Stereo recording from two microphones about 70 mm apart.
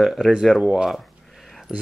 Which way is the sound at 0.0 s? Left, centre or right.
Centre.